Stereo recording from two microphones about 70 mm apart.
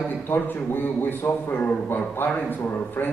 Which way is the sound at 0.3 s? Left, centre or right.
Left.